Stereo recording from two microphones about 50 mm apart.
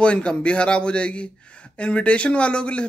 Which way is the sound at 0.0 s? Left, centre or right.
Left.